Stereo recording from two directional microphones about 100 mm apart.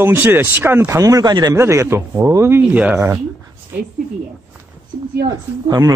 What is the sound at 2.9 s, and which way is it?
Speech, 30° right (ahead or behind).